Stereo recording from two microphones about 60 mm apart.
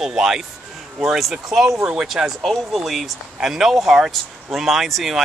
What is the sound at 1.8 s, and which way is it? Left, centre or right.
Speech, centre.